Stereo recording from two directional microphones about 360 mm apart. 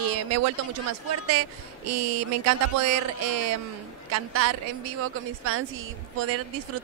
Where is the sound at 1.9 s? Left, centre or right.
Right.